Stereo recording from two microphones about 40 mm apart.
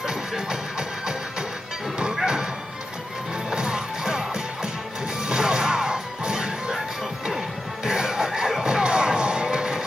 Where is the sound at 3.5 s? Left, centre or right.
Centre.